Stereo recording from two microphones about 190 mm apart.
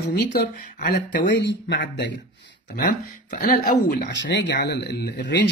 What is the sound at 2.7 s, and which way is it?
Speech, 45° left (ahead or behind).